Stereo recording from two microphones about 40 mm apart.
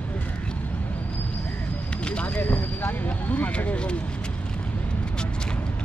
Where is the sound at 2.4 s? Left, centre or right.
Left.